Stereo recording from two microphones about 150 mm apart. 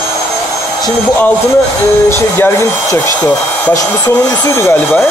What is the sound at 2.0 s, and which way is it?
Speech, 15° left (ahead or behind).